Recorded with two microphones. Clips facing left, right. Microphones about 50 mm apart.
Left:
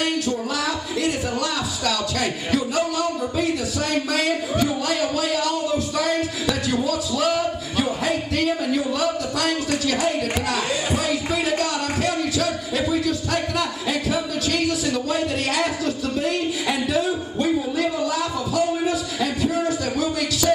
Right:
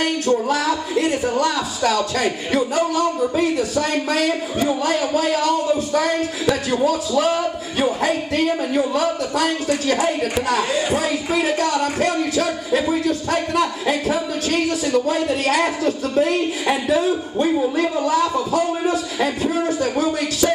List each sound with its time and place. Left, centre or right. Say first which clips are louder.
0.0 s a man's voice: right 4 dB; right